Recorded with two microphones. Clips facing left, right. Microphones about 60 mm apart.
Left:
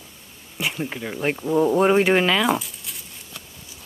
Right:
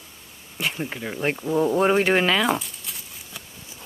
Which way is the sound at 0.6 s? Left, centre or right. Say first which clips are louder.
Left 1 dB; centre.